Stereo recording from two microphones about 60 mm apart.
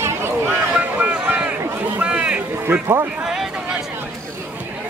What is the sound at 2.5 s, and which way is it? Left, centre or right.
Speech, right.